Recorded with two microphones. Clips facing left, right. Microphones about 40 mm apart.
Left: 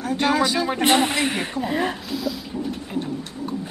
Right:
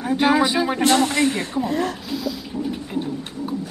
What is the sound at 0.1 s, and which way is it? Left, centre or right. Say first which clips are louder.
Speech: right 3 dB; centre.